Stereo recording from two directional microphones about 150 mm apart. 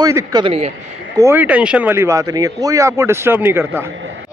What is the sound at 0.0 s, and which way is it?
Speech, 25° right (ahead or behind).